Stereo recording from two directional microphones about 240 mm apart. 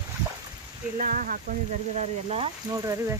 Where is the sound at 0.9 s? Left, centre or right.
Right.